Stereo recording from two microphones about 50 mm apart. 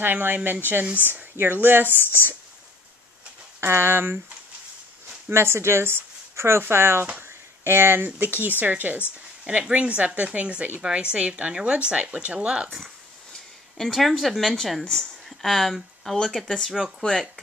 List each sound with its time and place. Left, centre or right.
0.0 s speech: right
3.6 s speech: right
5.3 s speech: right
9.4 s speech: right
12.8 s a sound: centre
13.8 s speech: centre